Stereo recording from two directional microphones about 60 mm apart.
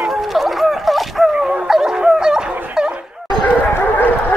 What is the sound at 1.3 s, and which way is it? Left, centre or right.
Dog, centre.